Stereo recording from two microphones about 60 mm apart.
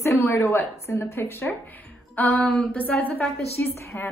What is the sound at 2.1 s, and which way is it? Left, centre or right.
A woman's voice, left.